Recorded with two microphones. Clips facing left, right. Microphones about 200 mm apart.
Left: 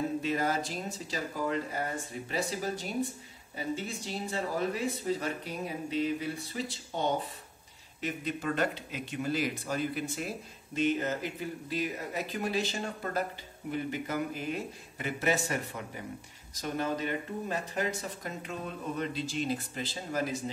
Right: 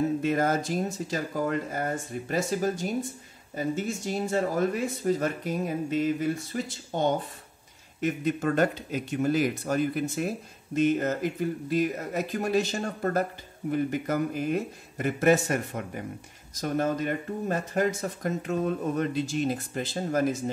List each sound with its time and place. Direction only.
0.2 s speech: 50° right (ahead or behind)